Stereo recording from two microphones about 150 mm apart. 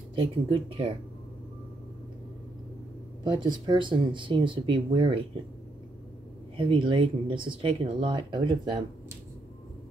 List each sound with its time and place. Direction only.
0.2 s speech: 35° right (ahead or behind)
3.6 s speech: 35° right (ahead or behind)
6.5 s speech: 35° right (ahead or behind)